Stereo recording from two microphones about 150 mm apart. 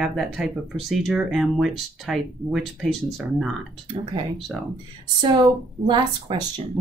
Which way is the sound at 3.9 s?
45° right (ahead or behind).